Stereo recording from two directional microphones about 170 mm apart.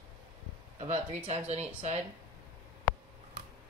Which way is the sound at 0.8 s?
40° right (ahead or behind).